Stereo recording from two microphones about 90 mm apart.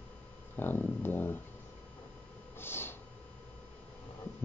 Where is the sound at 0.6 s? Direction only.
20° left (ahead or behind).